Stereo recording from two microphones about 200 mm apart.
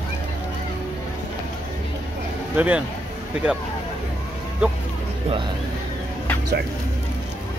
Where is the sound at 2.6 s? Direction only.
5° right (ahead or behind).